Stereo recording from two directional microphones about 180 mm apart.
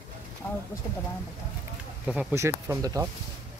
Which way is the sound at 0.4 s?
15° left (ahead or behind).